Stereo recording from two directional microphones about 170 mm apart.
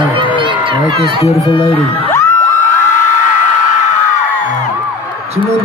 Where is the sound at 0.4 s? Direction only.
30° right (ahead or behind).